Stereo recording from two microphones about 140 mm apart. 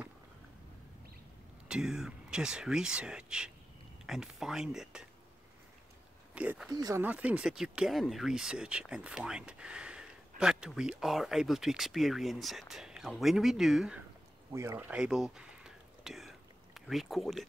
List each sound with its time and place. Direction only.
1.7 s speech: 5° right (ahead or behind)
6.3 s speech: 10° right (ahead or behind)
6.7 s speech: 25° right (ahead or behind)
7.0 s speech: 10° right (ahead or behind)
14.5 s whispering: 20° right (ahead or behind); by 17.5 s centre (ahead or behind)